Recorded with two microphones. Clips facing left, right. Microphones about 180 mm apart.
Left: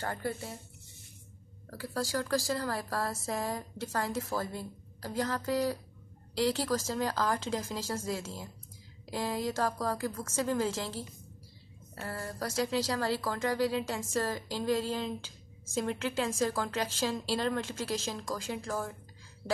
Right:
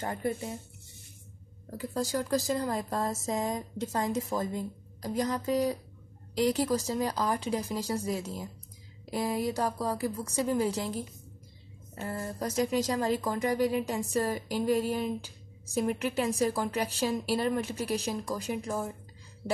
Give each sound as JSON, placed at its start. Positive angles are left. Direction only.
{"t": 0.0, "sound": "speech", "side_deg": -20}
{"t": 1.7, "sound": "a woman's voice", "side_deg": -20}